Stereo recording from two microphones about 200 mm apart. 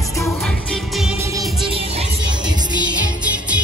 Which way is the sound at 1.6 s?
30° right (ahead or behind).